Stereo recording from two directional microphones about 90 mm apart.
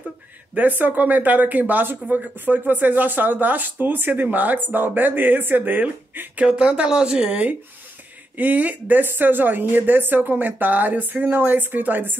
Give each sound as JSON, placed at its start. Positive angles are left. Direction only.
{"t": 0.6, "sound": "speech", "side_deg": -20}